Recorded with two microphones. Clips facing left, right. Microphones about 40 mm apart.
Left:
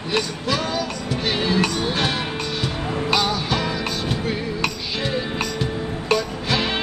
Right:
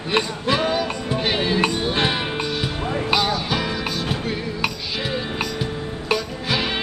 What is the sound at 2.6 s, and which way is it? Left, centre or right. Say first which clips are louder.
Music: even; centre.